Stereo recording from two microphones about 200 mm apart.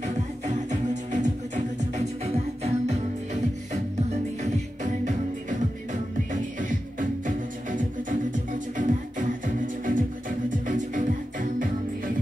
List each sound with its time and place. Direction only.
0.0 s music: 35° right (ahead or behind)